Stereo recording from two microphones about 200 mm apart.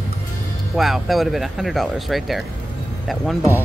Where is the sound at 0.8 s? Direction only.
Centre (ahead or behind).